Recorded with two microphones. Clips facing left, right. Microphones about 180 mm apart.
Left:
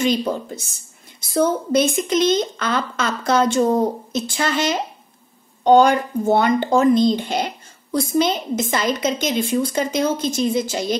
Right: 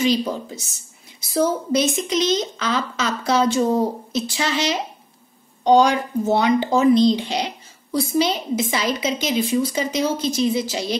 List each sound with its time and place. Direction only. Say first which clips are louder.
0.0 s a woman's voice: even; centre (ahead or behind)
6.9 s speech: right 3 dB; 50° left (ahead or behind)
7.2 s a woman's voice: left 2 dB; centre (ahead or behind)